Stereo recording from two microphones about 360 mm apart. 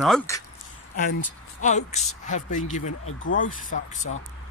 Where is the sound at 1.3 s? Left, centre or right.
Centre.